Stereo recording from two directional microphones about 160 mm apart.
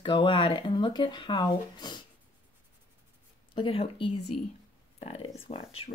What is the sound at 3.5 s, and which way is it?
Speech, 35° left (ahead or behind).